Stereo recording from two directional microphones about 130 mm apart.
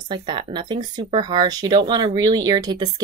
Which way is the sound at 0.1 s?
40° right (ahead or behind).